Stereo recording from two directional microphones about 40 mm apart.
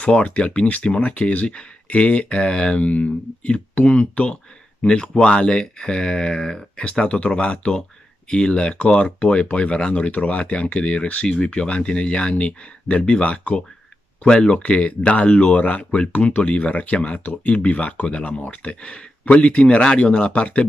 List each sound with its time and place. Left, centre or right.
0.0 s speech: left
4.8 s speech: left